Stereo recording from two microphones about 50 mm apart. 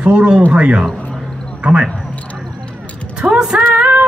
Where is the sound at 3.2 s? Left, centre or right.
Centre.